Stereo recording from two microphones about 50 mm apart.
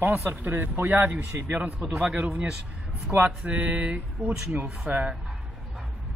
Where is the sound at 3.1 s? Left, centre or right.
Right.